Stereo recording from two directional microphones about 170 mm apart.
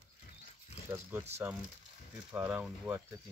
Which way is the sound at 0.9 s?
15° right (ahead or behind).